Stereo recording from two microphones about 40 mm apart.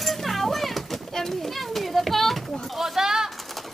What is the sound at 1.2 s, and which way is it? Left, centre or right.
Children playing, centre.